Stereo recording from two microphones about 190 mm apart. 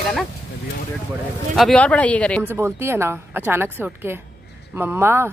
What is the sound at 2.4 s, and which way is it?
A woman's voice, 15° right (ahead or behind).